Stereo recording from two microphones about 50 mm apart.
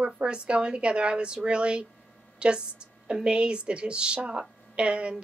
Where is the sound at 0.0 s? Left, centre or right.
Centre.